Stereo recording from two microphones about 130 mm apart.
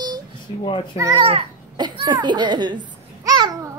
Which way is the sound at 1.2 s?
50° right (ahead or behind).